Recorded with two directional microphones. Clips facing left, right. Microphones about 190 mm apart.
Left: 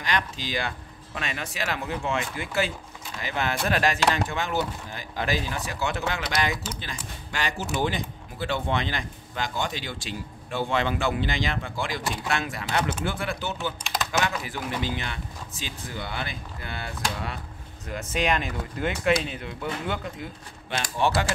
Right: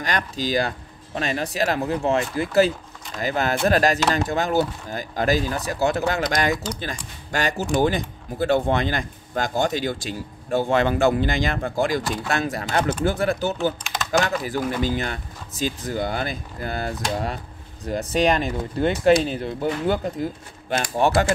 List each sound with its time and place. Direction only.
0.0 s speech: 40° right (ahead or behind)
20.7 s speech: 50° right (ahead or behind)